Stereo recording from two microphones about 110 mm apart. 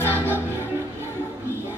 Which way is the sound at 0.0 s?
20° left (ahead or behind).